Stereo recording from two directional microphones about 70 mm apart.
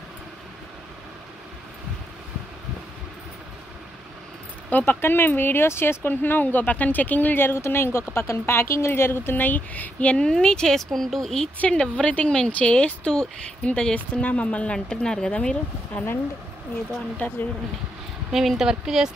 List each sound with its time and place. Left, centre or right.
4.6 s speech: left
15.9 s speech: left
18.3 s a woman's voice: centre